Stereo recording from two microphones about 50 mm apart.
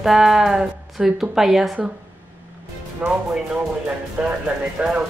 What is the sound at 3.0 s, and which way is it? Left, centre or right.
Speech, right.